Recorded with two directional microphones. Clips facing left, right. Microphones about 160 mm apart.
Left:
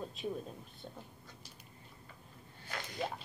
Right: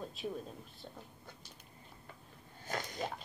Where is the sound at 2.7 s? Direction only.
45° right (ahead or behind).